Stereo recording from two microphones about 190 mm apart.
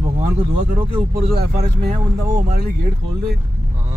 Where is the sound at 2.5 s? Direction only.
50° right (ahead or behind).